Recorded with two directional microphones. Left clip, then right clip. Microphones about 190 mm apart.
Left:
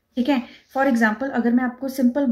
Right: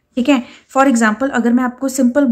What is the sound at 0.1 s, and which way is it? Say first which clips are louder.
A woman's voice: right 7 dB; 30° right (ahead or behind).